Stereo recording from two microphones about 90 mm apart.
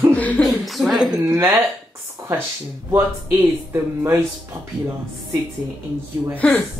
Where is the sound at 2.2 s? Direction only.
40° right (ahead or behind).